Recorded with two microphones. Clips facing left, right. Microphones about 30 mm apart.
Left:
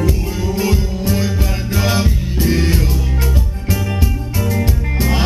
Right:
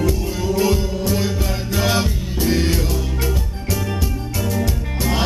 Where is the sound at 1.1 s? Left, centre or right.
Centre.